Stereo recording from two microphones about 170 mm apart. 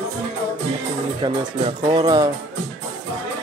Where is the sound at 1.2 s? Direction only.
25° right (ahead or behind).